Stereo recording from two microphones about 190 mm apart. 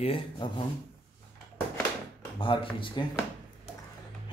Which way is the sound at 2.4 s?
25° left (ahead or behind).